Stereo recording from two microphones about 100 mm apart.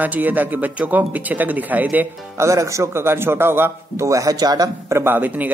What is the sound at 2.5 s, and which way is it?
A man's voice, 30° right (ahead or behind).